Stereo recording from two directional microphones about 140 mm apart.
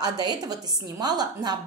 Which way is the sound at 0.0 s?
30° right (ahead or behind).